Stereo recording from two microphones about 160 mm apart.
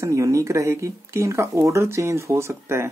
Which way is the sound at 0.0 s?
20° right (ahead or behind).